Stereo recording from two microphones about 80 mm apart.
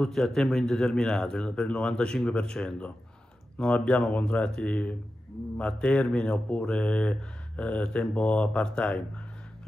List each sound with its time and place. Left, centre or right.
0.0 s speech: centre